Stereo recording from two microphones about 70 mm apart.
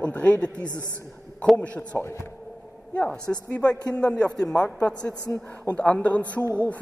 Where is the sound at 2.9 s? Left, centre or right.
Centre.